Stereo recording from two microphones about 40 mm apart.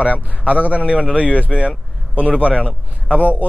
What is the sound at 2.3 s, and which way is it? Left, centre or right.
Speech, left.